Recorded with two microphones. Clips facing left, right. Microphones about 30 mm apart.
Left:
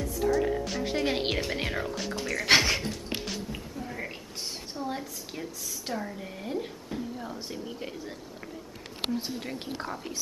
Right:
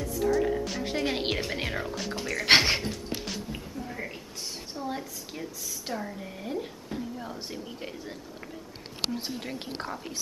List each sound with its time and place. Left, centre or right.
0.0 s a woman's voice: centre
2.4 s speech: right
3.3 s a woman's voice: centre
9.7 s speech: right